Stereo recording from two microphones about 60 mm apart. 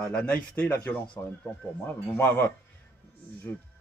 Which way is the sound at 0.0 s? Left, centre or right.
Centre.